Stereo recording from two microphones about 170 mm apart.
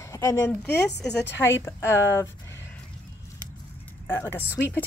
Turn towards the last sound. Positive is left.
turn(degrees=10)  # may be behind; listen again after turning